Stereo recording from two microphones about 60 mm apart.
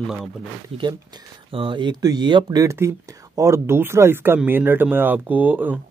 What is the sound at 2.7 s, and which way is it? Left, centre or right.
Speech, right.